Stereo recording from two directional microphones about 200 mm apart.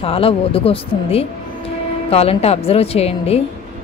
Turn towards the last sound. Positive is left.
turn(degrees=30)  # may be behind; listen again after turning